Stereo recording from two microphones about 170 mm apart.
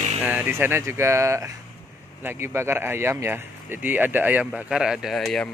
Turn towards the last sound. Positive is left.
turn(degrees=0)  # may be behind; listen again after turning